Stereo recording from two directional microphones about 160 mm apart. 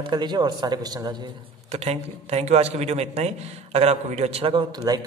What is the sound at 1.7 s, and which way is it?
A man's voice, 40° right (ahead or behind).